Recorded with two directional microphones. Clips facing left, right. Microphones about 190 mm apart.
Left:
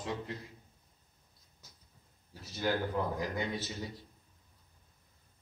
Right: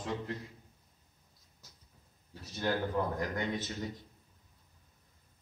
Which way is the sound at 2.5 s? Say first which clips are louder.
Even; 5° left (ahead or behind).